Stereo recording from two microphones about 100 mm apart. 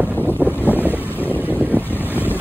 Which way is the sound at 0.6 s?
20° left (ahead or behind).